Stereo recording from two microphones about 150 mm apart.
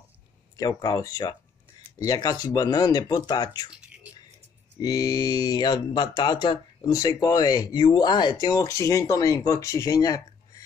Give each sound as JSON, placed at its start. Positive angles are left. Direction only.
{"t": 0.6, "sound": "speech", "side_deg": 25}
{"t": 3.7, "sound": "drip", "side_deg": -5}
{"t": 4.8, "sound": "speech", "side_deg": 25}